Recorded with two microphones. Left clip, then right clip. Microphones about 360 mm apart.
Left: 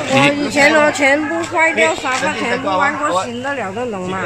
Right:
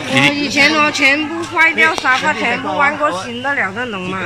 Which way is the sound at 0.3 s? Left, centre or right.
Left.